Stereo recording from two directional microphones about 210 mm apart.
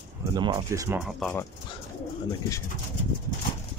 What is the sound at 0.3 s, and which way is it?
Speech, 20° right (ahead or behind).